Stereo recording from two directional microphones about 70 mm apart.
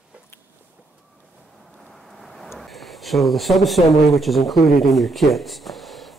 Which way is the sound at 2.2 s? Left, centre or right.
Centre.